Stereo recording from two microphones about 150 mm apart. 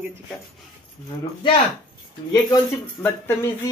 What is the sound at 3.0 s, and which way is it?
Speech, 15° left (ahead or behind).